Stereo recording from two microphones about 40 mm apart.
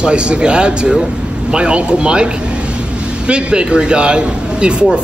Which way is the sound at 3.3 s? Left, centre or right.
Right.